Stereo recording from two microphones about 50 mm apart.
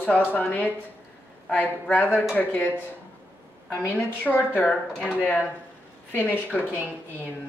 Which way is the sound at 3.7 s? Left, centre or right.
Left.